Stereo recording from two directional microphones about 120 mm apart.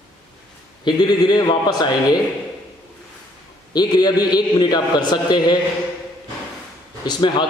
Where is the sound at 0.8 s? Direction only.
35° left (ahead or behind).